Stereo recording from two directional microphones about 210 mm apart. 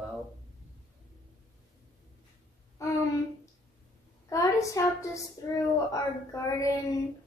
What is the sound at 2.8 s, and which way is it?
Speech, 15° left (ahead or behind).